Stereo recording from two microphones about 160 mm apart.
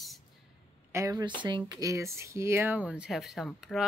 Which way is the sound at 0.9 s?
20° right (ahead or behind).